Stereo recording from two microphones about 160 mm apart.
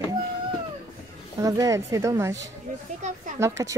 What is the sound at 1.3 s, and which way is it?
A woman's voice, 20° right (ahead or behind).